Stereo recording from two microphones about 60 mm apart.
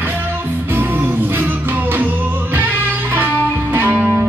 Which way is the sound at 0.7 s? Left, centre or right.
Right.